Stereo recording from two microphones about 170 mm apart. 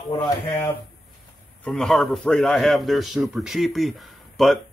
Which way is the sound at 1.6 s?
Centre (ahead or behind).